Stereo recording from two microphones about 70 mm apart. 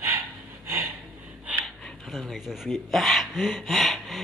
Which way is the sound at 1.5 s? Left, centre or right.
Right.